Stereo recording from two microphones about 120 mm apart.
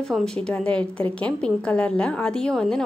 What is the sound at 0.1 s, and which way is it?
A woman's voice, 5° left (ahead or behind).